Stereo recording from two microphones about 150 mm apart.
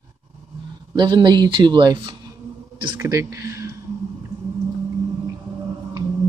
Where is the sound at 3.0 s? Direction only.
20° right (ahead or behind).